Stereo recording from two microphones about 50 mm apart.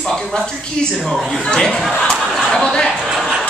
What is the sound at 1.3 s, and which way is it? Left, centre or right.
Speech, centre.